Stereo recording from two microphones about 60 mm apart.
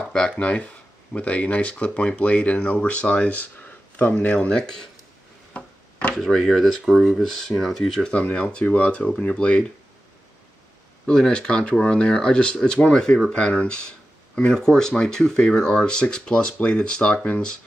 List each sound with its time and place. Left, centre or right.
0.0 s speech: centre
5.5 s a sound: left
6.2 s speech: centre
8.1 s speech: left
11.1 s speech: centre